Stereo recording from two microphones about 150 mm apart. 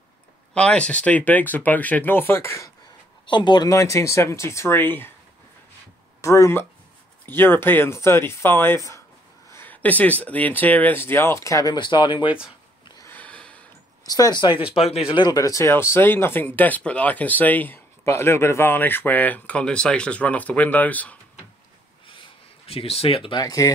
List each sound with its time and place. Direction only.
0.6 s speech: 5° left (ahead or behind)
3.3 s speech: 30° left (ahead or behind); by 5.1 s 15° left (ahead or behind)
6.2 s speech: 20° left (ahead or behind)
13.0 s a sound: 10° left (ahead or behind)
14.0 s speech: 25° left (ahead or behind)
15.0 s speech: 30° left (ahead or behind); by 21.2 s 10° left (ahead or behind)
22.7 s speech: 40° left (ahead or behind); by 23.7 s 25° left (ahead or behind)